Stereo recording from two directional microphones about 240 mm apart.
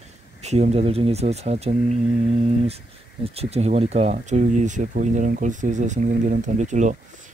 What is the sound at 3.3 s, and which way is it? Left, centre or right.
Speech, right.